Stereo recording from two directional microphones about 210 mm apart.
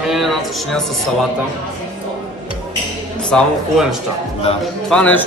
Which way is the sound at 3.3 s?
5° left (ahead or behind).